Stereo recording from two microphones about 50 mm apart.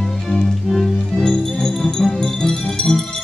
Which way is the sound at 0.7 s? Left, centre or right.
Centre.